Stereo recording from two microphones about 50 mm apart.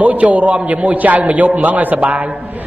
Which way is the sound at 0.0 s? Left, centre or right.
Right.